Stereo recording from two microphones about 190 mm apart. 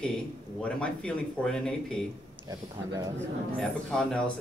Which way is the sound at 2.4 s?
20° right (ahead or behind).